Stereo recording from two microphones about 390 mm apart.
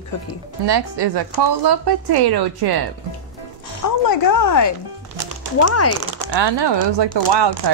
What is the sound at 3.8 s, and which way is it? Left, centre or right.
Speech, left.